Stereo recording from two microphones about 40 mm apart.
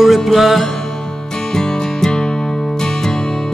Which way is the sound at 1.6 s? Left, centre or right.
Centre.